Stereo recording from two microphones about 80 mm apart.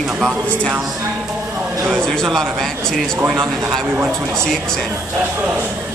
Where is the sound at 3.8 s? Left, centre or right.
Right.